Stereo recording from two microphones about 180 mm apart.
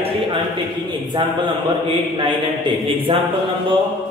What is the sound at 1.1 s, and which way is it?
Speech, 25° right (ahead or behind).